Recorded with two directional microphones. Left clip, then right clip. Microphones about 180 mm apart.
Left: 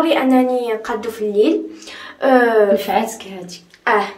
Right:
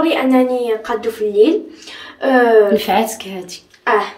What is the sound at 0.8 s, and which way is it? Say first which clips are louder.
Speech: right 3 dB; 15° left (ahead or behind).